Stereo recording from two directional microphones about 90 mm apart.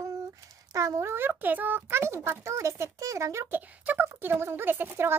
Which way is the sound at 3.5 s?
20° right (ahead or behind).